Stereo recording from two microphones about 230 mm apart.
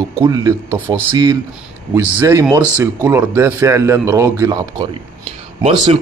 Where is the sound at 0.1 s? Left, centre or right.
Centre.